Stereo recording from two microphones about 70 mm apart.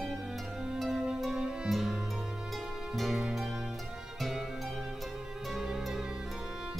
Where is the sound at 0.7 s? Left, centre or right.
Centre.